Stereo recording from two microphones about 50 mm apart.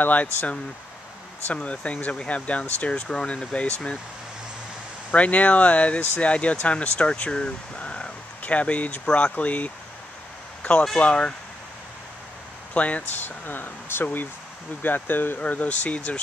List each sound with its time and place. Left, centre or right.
0.0 s speech: left
5.1 s speech: left
10.6 s a sound: left
11.0 s speech: left
12.7 s speech: left
13.5 s speech: left
15.4 s speech: left